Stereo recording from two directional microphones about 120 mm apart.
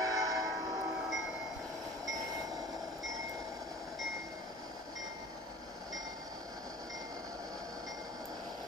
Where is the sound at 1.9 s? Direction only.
30° right (ahead or behind).